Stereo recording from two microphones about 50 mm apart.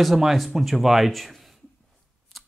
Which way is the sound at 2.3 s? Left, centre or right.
Centre.